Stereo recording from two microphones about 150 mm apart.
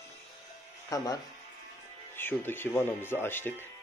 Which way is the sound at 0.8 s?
25° left (ahead or behind).